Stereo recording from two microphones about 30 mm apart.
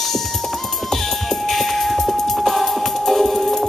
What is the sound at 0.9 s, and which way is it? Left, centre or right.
Music, centre.